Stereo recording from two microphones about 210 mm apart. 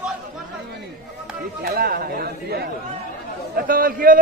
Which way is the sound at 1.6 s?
45° right (ahead or behind).